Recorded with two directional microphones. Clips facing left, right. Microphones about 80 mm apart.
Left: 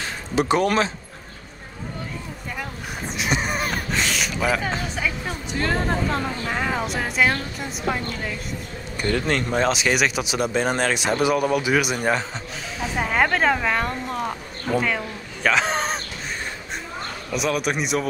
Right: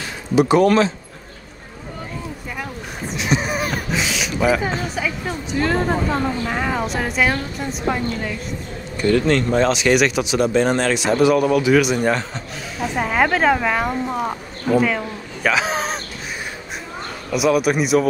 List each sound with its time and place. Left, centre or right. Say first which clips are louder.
0.7 s a man's voice: right 5 dB; centre
3.2 s a man's voice: right 3 dB; centre
17.3 s speech: right 7 dB; centre